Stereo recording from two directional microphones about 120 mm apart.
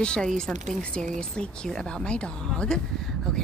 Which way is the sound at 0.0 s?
5° left (ahead or behind).